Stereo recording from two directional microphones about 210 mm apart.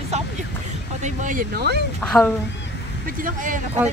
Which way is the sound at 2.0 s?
5° left (ahead or behind).